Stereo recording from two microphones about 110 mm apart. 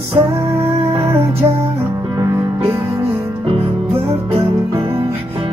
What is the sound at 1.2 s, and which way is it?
Music, 60° right (ahead or behind).